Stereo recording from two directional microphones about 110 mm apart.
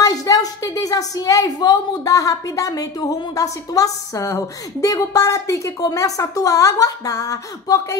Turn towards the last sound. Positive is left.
turn(degrees=30)  # may be behind; listen again after turning